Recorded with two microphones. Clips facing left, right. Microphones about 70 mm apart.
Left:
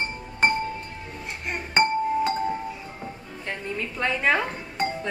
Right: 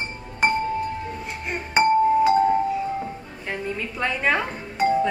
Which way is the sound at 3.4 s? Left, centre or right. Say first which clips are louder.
Right 2 dB; centre.